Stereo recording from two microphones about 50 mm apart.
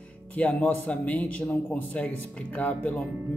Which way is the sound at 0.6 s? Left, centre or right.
Left.